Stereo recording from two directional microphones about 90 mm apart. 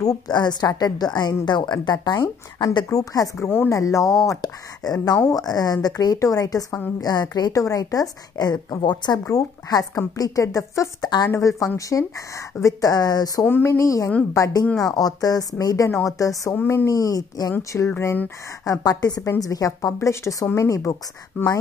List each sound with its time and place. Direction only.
0.0 s a woman's voice: 45° left (ahead or behind)
2.9 s speech: 40° left (ahead or behind)
3.4 s speech: 25° left (ahead or behind)
3.7 s a woman's voice: 35° left (ahead or behind)
12.9 s a woman's voice: 45° left (ahead or behind)
13.5 s a woman's voice: 25° left (ahead or behind)
17.9 s speech: 20° left (ahead or behind)
18.6 s speech: 40° left (ahead or behind)
21.4 s speech: 20° left (ahead or behind)